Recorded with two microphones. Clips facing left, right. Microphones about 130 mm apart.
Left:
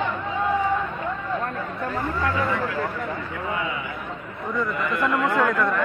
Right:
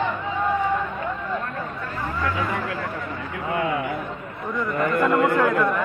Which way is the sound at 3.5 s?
55° right (ahead or behind).